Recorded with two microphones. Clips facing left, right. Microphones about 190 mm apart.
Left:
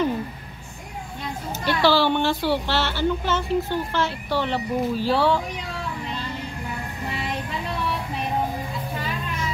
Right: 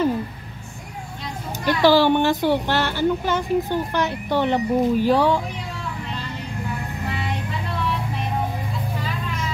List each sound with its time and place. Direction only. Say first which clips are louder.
1.6 s a woman's voice: right 4 dB; 15° right (ahead or behind)